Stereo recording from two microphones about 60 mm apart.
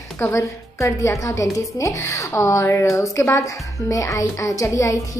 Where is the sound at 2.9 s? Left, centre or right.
Left.